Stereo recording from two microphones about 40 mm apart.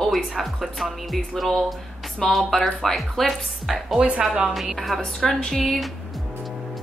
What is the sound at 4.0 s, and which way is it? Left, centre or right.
Speech, right.